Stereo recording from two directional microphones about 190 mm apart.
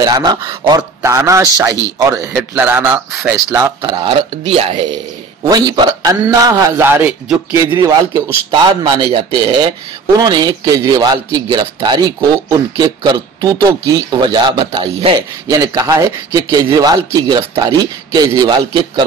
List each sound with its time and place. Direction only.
0.0 s speech: 20° right (ahead or behind)
3.8 s speech: 30° right (ahead or behind)
15.6 s speech: 15° right (ahead or behind)